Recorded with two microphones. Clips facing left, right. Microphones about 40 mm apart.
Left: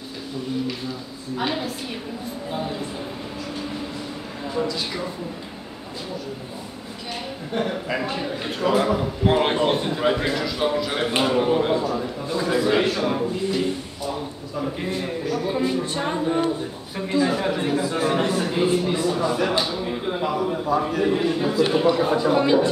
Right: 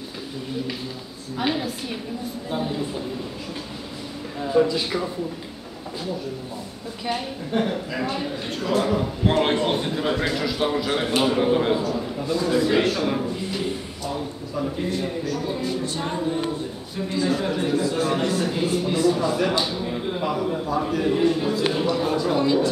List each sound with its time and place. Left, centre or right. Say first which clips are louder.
1.3 s a man's voice: right 1 dB; centre
4.6 s speech: right 6 dB; centre
7.5 s a man's voice: right 2 dB; centre
8.0 s a man's voice: even; centre
11.8 s a man's voice: left 1 dB; centre
14.6 s a man's voice: right 1 dB; centre
19.7 s a sound: left 1 dB; centre
20.2 s a man's voice: left 1 dB; centre; by 22.7 s left